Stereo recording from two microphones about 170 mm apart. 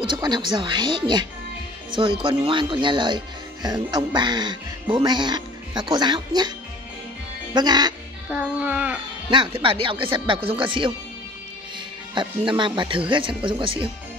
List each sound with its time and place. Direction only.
0.0 s speech: 25° right (ahead or behind)
7.5 s speech: 25° right (ahead or behind)
8.3 s music: 10° right (ahead or behind)
9.3 s speech: 30° right (ahead or behind)
12.1 s speech: 30° right (ahead or behind)